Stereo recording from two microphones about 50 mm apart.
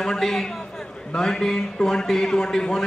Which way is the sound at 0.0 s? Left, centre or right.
Centre.